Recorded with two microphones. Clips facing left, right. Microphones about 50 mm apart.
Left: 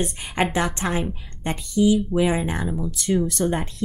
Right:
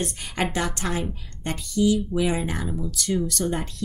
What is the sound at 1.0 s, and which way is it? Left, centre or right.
Speech, centre.